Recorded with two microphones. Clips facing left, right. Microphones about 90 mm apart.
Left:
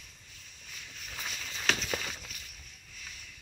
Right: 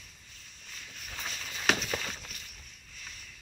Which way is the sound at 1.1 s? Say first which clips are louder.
Right 1 dB; centre (ahead or behind).